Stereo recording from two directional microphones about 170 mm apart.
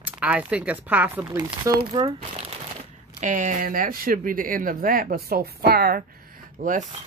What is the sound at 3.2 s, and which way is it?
Speech, 45° right (ahead or behind).